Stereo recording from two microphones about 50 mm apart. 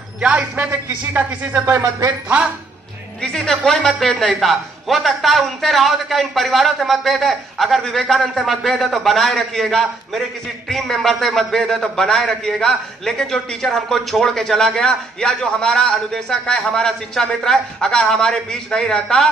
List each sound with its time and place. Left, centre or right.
0.2 s a man's voice: right
0.7 s speech: right
3.2 s a man's voice: centre